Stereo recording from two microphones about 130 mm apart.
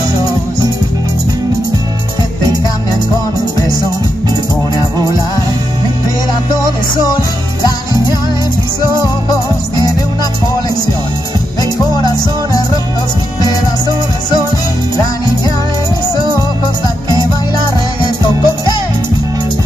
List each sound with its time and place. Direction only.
4.7 s music: 25° left (ahead or behind)
6.5 s music: 30° left (ahead or behind)
18.0 s music: 35° left (ahead or behind)